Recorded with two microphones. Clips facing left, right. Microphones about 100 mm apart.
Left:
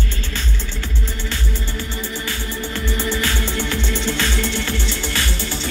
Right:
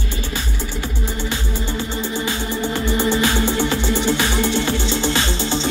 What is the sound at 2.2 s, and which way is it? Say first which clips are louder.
Music: right 5 dB; 20° right (ahead or behind).